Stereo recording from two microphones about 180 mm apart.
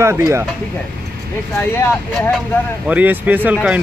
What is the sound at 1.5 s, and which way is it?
Speech, 15° left (ahead or behind).